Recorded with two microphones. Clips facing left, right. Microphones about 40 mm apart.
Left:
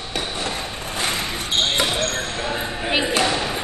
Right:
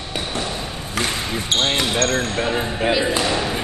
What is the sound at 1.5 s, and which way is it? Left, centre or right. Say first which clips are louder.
Speech: right 1 dB; right.